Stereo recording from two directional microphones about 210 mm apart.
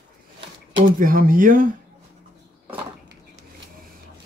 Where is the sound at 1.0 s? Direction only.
40° right (ahead or behind).